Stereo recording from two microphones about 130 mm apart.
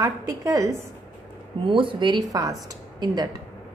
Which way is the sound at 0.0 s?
25° right (ahead or behind).